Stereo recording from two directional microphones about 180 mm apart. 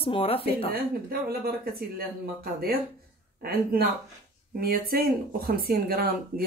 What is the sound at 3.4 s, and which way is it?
Speech, 55° right (ahead or behind).